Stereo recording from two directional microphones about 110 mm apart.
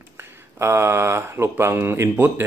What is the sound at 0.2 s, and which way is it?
A man's voice, 25° right (ahead or behind).